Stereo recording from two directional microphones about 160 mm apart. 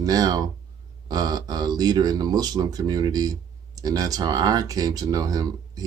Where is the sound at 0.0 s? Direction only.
25° right (ahead or behind).